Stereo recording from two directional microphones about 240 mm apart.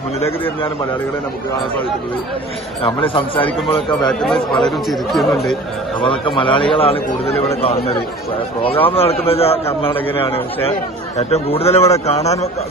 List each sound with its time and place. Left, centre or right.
2.8 s speech: left
4.0 s speech: centre
5.9 s speech: left